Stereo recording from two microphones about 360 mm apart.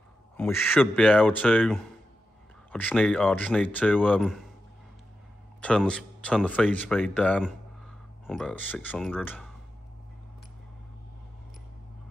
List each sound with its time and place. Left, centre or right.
0.4 s speech: centre
5.6 s speech: centre